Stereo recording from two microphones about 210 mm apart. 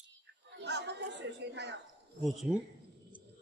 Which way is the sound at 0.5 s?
55° right (ahead or behind).